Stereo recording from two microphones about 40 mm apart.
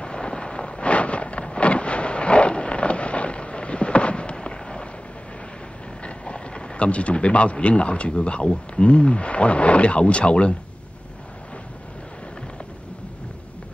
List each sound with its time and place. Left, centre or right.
0.0 s vehicle: left
6.0 s speech: left